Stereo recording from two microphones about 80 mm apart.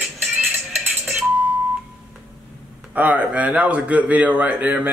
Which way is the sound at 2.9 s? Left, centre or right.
Centre.